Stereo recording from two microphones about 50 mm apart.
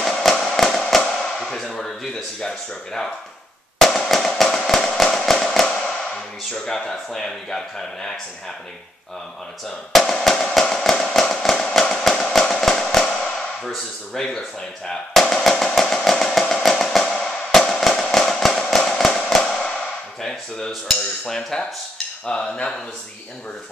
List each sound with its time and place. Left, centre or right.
0.0 s firecracker: centre
2.4 s speech: centre
3.7 s fireworks: centre
6.6 s speech: centre
9.9 s music: centre
14.1 s speech: centre
14.9 s drum: centre
18.1 s firecracker: centre
20.2 s speech: centre